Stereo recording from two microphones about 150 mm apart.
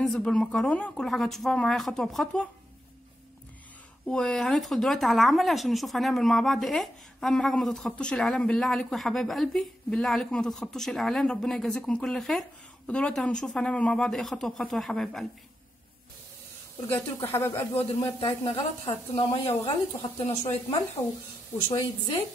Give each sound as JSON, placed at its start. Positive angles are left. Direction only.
{"t": 0.0, "sound": "speech", "side_deg": 5}
{"t": 4.1, "sound": "speech", "side_deg": 5}
{"t": 16.9, "sound": "speech", "side_deg": 15}
{"t": 18.2, "sound": "speech", "side_deg": 30}
{"t": 21.6, "sound": "a woman's voice", "side_deg": 25}